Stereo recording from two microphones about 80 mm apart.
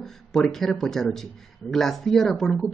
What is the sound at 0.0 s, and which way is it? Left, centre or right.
A man's voice, centre.